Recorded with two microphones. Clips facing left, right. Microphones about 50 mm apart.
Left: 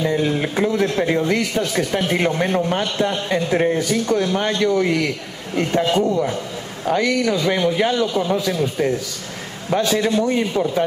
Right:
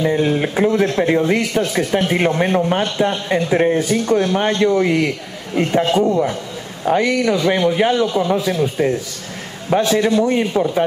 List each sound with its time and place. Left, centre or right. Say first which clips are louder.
0.0 s speech: right 3 dB; centre
3.9 s speech: right 3 dB; right
5.5 s a man's voice: right 2 dB; centre
9.7 s speech: right 3 dB; right